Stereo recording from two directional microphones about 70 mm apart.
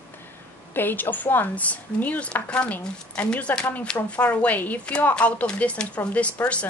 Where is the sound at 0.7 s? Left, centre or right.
Left.